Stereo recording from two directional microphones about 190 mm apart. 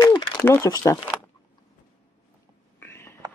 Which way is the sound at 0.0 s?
20° left (ahead or behind).